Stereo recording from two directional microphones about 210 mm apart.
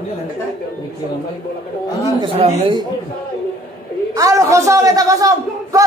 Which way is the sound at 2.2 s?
25° right (ahead or behind).